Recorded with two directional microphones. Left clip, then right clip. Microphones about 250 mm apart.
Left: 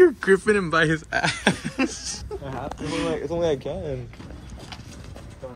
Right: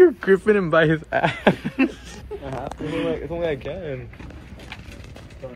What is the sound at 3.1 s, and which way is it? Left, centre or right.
Speech, left.